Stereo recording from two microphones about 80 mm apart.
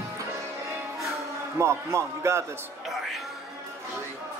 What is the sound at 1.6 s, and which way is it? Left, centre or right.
Speech, right.